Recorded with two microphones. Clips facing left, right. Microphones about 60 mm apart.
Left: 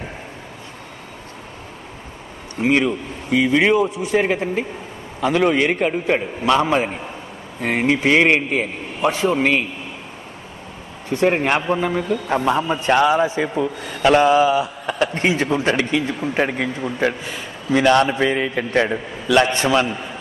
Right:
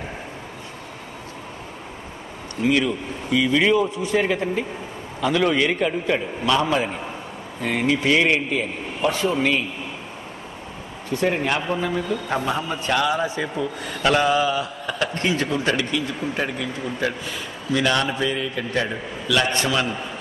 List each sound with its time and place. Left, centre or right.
2.6 s a man's voice: left
11.1 s a man's voice: left
11.7 s a man's voice: left
17.6 s a man's voice: left
18.9 s a man's voice: left